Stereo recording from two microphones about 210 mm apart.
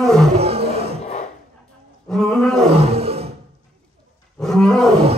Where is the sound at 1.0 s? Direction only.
30° left (ahead or behind).